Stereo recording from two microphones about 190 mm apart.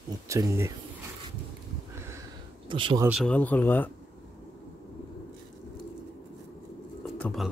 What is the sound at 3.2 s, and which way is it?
Speech, 10° left (ahead or behind).